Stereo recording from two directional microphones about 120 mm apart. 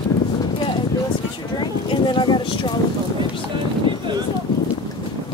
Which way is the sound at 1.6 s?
40° left (ahead or behind).